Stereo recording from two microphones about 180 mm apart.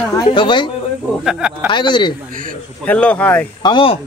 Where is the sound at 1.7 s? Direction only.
25° left (ahead or behind).